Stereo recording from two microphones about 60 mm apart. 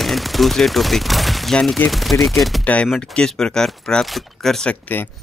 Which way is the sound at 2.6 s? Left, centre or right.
Left.